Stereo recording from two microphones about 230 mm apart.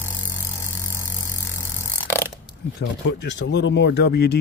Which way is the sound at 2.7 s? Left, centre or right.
Left.